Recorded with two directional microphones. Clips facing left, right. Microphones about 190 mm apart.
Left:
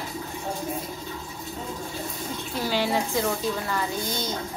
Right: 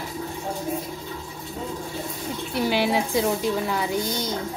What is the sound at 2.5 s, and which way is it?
Speech, 15° right (ahead or behind).